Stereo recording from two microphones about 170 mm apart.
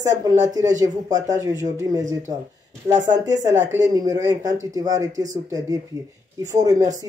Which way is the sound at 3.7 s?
20° right (ahead or behind).